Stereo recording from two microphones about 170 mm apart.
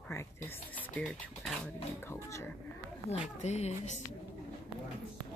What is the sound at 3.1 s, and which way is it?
Speech, 35° left (ahead or behind).